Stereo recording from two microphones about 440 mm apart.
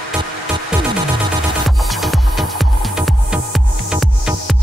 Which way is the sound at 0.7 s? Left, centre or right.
Centre.